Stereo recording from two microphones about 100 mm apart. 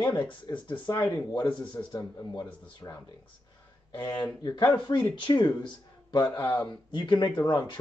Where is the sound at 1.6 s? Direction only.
50° left (ahead or behind).